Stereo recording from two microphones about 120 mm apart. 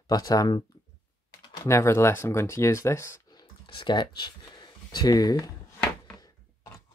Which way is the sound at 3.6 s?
40° left (ahead or behind).